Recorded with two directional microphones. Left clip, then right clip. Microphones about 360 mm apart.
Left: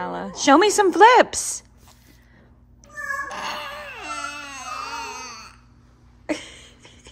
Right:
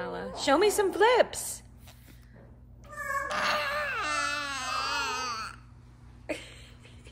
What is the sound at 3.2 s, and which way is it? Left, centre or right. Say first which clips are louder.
Baby cry: right 1 dB; right.